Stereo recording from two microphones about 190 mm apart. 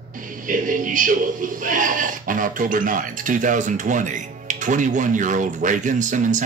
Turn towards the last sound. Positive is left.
turn(degrees=-40)  # may be behind; listen again after turning